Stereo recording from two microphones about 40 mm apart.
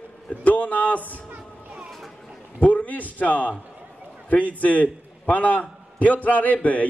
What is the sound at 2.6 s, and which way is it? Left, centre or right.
A man's voice, left.